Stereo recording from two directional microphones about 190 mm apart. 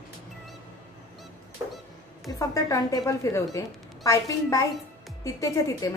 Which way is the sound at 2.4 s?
15° left (ahead or behind).